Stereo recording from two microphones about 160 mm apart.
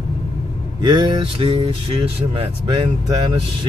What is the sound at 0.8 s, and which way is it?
Mantra, 30° right (ahead or behind).